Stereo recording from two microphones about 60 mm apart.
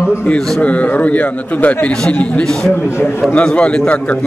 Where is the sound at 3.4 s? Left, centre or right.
Centre.